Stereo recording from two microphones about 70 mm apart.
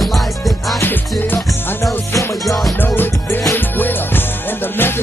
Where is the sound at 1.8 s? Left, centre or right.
Left.